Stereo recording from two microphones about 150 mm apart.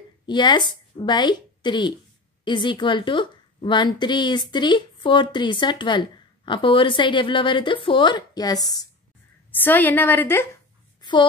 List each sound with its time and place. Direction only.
0.3 s a woman's voice: 30° left (ahead or behind)
9.6 s a woman's voice: 10° left (ahead or behind)
11.0 s a sound: 30° left (ahead or behind)